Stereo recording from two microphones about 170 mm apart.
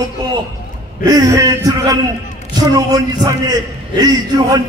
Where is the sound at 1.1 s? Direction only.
20° right (ahead or behind).